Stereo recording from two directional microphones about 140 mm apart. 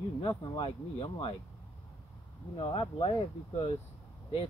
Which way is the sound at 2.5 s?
45° left (ahead or behind).